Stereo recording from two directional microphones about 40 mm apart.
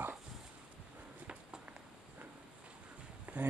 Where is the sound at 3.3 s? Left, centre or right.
Right.